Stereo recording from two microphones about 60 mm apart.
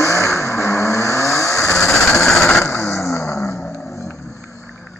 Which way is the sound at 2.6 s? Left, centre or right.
Left.